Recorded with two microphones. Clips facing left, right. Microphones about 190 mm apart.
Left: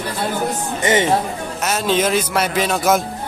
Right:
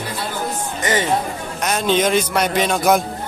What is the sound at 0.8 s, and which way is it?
Speech, 25° left (ahead or behind).